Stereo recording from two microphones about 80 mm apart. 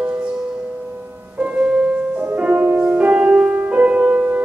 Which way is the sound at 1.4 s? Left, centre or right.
Centre.